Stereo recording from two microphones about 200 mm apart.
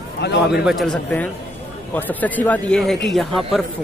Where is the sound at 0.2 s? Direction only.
55° left (ahead or behind).